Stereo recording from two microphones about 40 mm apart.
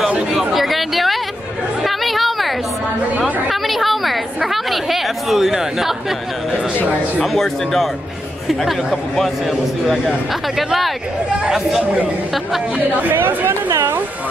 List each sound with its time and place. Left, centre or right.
0.3 s a sound: centre
1.8 s chatter: centre
4.5 s speech: centre
7.3 s speech: centre
9.1 s speech: centre
13.0 s speech: right